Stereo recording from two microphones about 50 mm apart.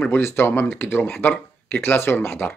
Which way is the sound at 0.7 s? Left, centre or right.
Left.